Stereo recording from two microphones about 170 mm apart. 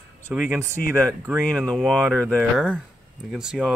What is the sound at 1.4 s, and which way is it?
Speech, 5° left (ahead or behind).